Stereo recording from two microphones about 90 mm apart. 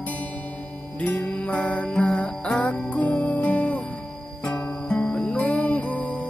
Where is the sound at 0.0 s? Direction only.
15° left (ahead or behind).